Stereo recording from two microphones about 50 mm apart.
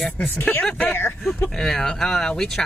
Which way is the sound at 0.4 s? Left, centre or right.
Left.